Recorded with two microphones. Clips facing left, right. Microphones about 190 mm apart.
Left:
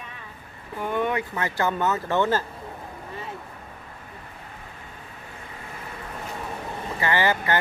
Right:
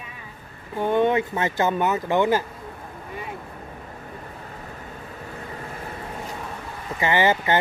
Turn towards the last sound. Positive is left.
turn(degrees=-20)  # may be behind; listen again after turning